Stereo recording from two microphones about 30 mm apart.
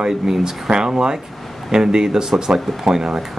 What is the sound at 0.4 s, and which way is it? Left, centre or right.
Speech, right.